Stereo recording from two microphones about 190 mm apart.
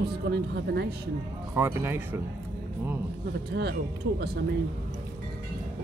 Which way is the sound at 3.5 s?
55° right (ahead or behind).